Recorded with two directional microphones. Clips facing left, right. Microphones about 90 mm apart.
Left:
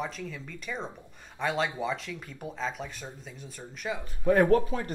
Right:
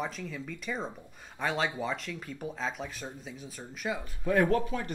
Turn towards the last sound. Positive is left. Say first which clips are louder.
# left 4 dB
turn(degrees=35)  # may be behind; listen again after turning